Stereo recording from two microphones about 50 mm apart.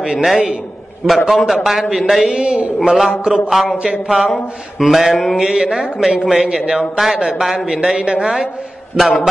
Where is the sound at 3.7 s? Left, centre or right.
Centre.